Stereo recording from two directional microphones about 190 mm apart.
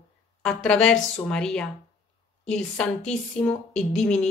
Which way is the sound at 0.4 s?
5° left (ahead or behind).